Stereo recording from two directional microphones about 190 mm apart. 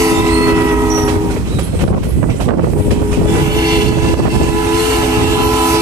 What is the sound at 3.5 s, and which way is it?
Vehicle, 20° right (ahead or behind).